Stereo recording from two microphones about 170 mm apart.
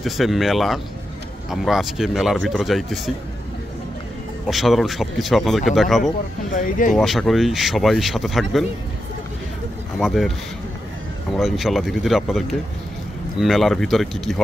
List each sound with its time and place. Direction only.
0.0 s speech: centre (ahead or behind)
4.5 s speech: centre (ahead or behind)
6.5 s speech: 50° left (ahead or behind)
6.9 s speech: centre (ahead or behind)
9.9 s speech: centre (ahead or behind)
11.3 s speech: centre (ahead or behind)